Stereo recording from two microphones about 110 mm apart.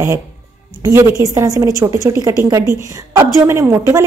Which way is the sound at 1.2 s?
30° right (ahead or behind).